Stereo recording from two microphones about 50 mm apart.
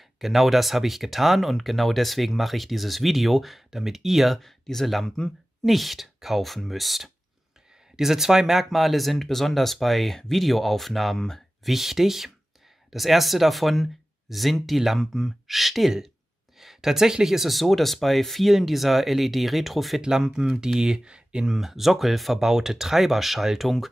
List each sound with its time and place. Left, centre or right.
0.2 s speech: centre
5.1 s speech: centre
5.7 s speech: centre
11.7 s speech: centre
21.5 s speech: centre